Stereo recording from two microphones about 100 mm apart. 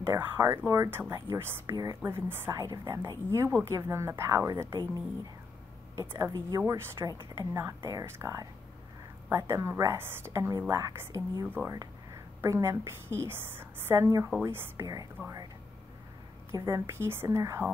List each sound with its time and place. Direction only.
0.1 s a woman's voice: 25° right (ahead or behind)
5.9 s a woman's voice: 30° right (ahead or behind)
11.4 s a woman's voice: 20° right (ahead or behind)
14.8 s a woman's voice: 35° right (ahead or behind)
16.5 s a woman's voice: 40° right (ahead or behind)
16.8 s a woman's voice: 25° right (ahead or behind)